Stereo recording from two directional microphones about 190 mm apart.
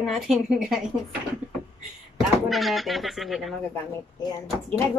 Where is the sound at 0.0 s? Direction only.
Centre (ahead or behind).